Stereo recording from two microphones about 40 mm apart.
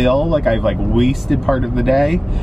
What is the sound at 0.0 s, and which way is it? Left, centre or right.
Speech, centre.